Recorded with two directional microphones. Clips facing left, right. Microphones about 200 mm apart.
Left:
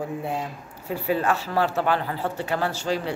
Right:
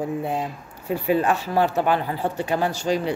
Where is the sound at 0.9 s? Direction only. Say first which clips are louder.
Right 3 dB; 15° right (ahead or behind).